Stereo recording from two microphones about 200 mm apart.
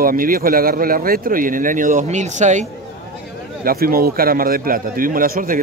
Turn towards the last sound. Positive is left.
turn(degrees=-45)  # may be behind; listen again after turning